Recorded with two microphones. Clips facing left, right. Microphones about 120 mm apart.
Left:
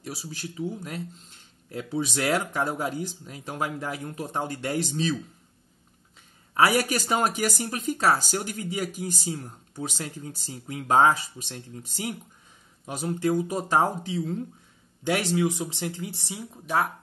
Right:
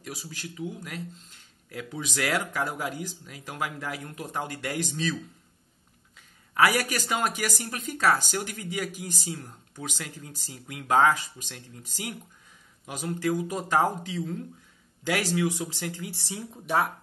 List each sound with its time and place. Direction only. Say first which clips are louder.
0.0 s speech: left 3 dB; 30° left (ahead or behind)
6.5 s speech: left 2 dB; 30° left (ahead or behind)
16.6 s speech: even; centre (ahead or behind)